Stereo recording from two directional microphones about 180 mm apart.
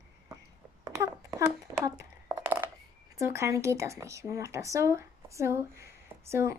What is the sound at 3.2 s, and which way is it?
Speech, 15° right (ahead or behind).